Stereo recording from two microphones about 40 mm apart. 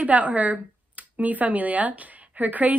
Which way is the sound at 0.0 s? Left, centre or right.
Right.